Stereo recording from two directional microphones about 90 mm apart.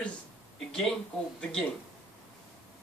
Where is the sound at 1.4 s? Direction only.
10° left (ahead or behind).